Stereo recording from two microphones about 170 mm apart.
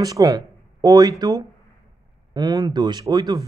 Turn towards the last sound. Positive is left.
turn(degrees=-20)  # may be behind; listen again after turning